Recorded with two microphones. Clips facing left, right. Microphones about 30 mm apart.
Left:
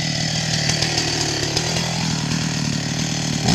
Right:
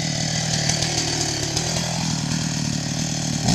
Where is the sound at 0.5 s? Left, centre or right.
Left.